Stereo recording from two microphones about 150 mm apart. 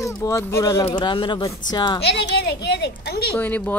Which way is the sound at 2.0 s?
90° left.